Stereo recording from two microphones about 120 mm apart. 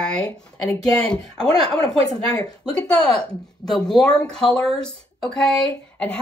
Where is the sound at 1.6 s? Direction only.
30° left (ahead or behind).